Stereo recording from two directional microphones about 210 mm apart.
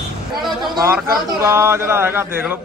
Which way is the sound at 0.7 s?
15° right (ahead or behind).